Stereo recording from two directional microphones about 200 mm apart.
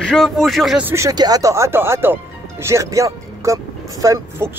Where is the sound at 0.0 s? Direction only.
Centre (ahead or behind).